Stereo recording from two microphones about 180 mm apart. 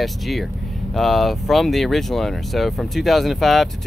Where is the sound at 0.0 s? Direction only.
Centre (ahead or behind).